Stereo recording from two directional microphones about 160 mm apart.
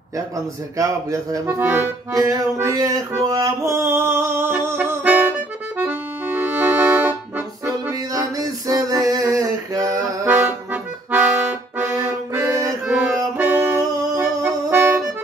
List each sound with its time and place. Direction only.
0.7 s accordion: 20° right (ahead or behind)
13.4 s music: 10° right (ahead or behind)
14.1 s brass instrument: 15° right (ahead or behind)